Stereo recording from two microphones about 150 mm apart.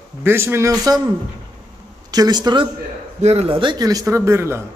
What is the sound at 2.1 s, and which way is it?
Speech, 25° right (ahead or behind).